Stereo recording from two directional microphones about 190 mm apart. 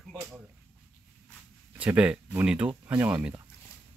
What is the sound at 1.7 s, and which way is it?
Speech, 5° right (ahead or behind).